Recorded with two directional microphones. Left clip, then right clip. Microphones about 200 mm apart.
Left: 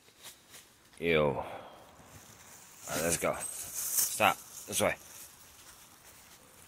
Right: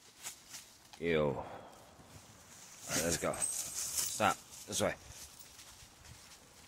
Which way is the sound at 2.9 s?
Centre (ahead or behind).